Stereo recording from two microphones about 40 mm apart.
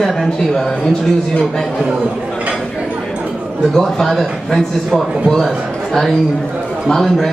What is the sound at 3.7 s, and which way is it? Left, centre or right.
A man's voice, centre.